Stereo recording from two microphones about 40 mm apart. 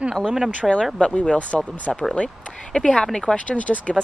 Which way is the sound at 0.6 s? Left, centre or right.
Centre.